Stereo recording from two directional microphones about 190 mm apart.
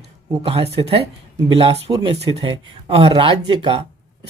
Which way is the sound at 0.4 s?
30° right (ahead or behind).